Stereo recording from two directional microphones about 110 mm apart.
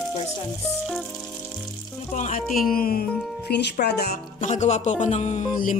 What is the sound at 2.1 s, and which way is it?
Speech, 90° left.